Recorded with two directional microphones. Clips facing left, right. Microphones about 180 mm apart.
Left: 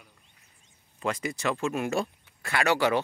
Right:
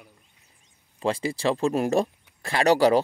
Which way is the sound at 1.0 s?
30° right (ahead or behind).